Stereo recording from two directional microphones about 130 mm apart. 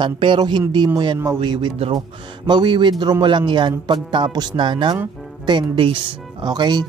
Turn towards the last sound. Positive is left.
turn(degrees=-35)  # may be behind; listen again after turning